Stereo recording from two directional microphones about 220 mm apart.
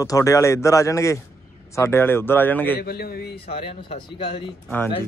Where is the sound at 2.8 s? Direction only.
45° left (ahead or behind).